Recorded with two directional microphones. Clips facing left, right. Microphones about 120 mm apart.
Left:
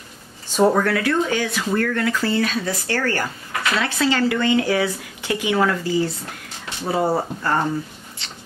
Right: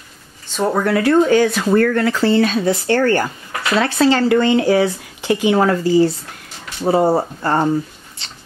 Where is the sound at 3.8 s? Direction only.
35° right (ahead or behind).